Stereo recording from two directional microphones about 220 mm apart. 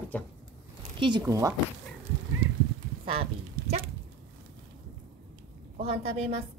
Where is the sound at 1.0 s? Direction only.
20° right (ahead or behind).